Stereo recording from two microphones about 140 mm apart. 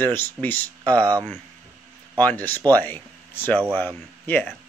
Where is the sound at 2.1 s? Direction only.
10° left (ahead or behind).